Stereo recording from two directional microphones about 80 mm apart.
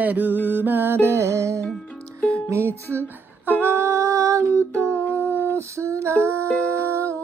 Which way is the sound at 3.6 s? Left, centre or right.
Right.